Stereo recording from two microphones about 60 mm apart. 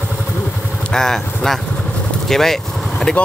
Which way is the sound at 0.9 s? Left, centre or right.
Centre.